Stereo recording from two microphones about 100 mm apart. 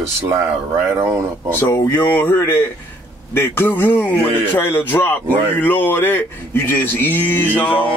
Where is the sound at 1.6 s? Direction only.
25° left (ahead or behind).